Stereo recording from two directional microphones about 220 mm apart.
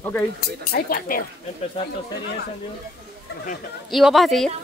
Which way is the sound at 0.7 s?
40° left (ahead or behind).